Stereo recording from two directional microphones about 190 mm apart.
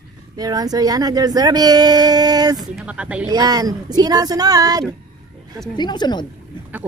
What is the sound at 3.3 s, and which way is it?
Speech, 20° right (ahead or behind).